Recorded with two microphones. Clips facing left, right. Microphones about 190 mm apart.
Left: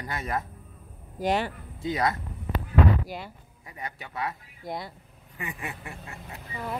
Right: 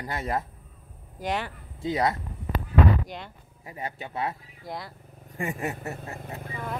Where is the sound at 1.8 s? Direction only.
30° right (ahead or behind).